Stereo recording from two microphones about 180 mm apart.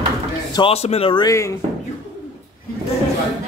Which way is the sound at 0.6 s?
30° left (ahead or behind).